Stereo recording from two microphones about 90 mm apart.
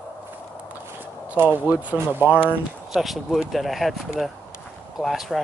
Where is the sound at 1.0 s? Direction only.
20° right (ahead or behind).